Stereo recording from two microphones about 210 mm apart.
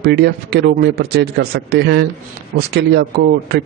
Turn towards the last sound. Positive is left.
turn(degrees=-50)  # may be behind; listen again after turning